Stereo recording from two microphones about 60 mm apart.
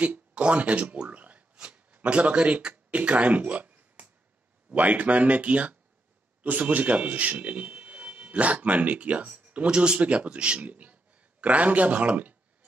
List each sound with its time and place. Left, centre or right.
0.0 s speech: centre